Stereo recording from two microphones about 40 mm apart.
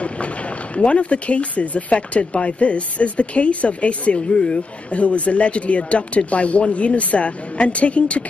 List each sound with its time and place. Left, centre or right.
0.7 s speech: left